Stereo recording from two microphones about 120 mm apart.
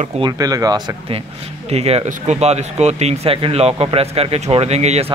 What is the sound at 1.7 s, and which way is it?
Speech, 60° right (ahead or behind).